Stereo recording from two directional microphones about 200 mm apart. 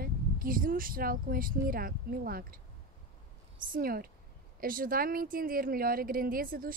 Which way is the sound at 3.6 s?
45° right (ahead or behind).